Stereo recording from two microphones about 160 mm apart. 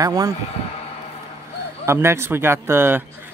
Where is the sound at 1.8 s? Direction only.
15° right (ahead or behind).